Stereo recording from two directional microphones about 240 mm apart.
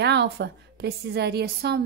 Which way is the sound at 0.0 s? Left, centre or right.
Right.